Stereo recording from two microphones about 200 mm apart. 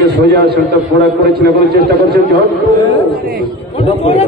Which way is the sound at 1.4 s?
50° right (ahead or behind).